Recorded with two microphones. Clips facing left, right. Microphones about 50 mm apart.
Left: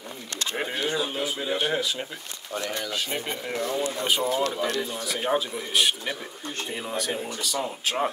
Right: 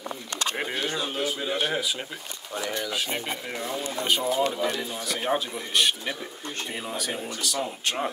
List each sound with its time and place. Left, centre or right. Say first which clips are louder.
0.6 s camera: left 4 dB; centre
0.8 s a sound: left 1 dB; centre
2.8 s speech: even; centre